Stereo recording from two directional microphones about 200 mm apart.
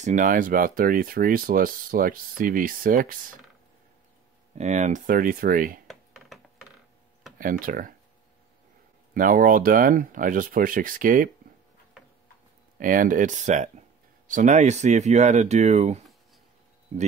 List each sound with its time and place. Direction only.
0.0 s speech: 40° right (ahead or behind)
4.6 s speech: 35° right (ahead or behind)
5.9 s a sound: centre (ahead or behind)
7.3 s speech: 45° right (ahead or behind)
9.1 s speech: 45° right (ahead or behind)
12.0 s tick-tock: 5° right (ahead or behind)
12.7 s speech: 40° right (ahead or behind)